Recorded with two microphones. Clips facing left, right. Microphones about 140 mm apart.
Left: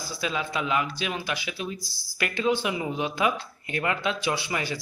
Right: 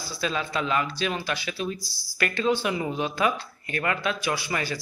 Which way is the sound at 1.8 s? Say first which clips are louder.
Even; 50° left (ahead or behind).